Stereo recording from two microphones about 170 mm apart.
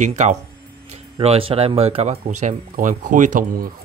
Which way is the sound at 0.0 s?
45° right (ahead or behind).